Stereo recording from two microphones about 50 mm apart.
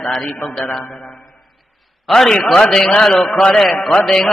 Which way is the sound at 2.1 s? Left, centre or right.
Centre.